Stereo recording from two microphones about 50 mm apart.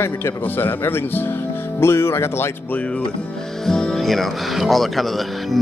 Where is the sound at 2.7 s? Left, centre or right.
Left.